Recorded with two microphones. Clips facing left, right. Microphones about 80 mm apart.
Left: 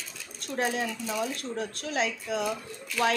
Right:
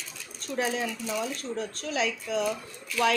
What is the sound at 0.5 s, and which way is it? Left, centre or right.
Speech, left.